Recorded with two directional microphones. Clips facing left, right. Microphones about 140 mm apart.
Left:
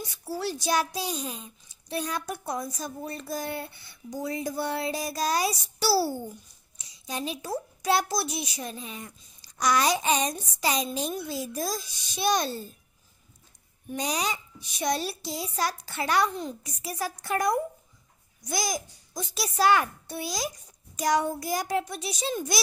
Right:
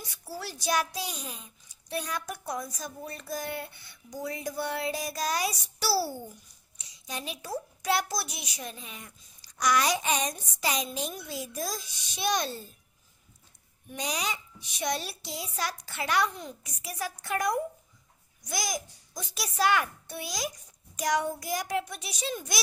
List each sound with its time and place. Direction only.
0.3 s a child's voice: 25° left (ahead or behind)
13.9 s a child's voice: 35° left (ahead or behind)